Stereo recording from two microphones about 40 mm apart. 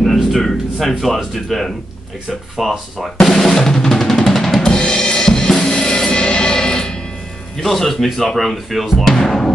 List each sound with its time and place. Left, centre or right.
0.0 s speech: centre
3.3 s drum: centre
4.6 s drum kit: left
7.6 s speech: centre
9.0 s music: centre